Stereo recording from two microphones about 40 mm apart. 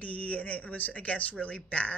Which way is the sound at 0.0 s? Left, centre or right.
Left.